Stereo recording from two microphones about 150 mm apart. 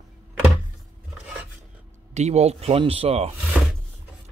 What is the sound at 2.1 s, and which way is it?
Speech, 45° right (ahead or behind).